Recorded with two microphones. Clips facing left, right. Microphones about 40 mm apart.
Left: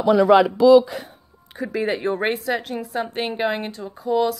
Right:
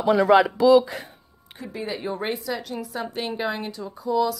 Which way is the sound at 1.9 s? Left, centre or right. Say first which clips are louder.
Left 4 dB; left.